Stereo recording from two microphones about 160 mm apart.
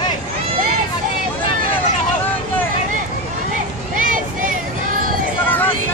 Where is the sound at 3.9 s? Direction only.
55° right (ahead or behind).